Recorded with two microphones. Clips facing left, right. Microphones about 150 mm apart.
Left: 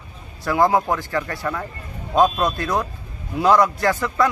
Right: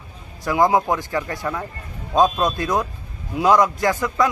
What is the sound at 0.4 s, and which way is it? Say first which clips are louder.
Speech: even; 15° right (ahead or behind).